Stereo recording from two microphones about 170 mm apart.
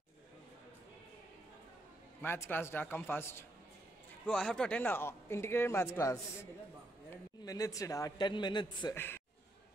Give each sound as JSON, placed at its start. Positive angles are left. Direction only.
{"t": 2.2, "sound": "speech", "side_deg": 15}
{"t": 7.4, "sound": "a man's voice", "side_deg": 20}
{"t": 8.9, "sound": "speech", "side_deg": 10}